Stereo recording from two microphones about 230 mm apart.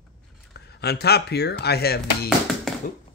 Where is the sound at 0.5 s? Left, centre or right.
Left.